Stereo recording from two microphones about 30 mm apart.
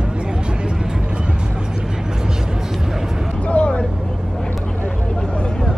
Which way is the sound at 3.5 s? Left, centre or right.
Left.